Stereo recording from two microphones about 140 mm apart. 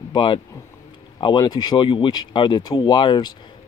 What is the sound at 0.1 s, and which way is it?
Speech, 35° left (ahead or behind).